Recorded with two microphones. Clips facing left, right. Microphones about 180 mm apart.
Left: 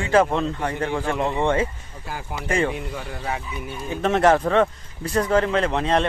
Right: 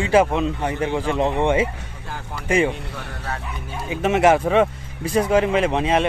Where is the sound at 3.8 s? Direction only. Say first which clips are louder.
Right 1 dB; 10° right (ahead or behind).